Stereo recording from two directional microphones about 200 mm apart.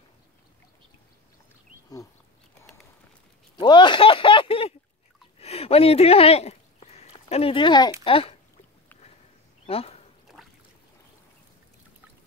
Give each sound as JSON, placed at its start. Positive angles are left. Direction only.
{"t": 3.5, "sound": "a sound", "side_deg": 25}
{"t": 8.0, "sound": "speech", "side_deg": 25}
{"t": 9.7, "sound": "speech", "side_deg": 30}